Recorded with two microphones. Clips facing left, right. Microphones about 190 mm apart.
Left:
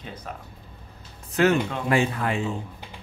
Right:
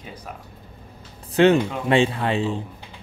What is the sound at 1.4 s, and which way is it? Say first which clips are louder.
Speech: right 5 dB; 25° right (ahead or behind).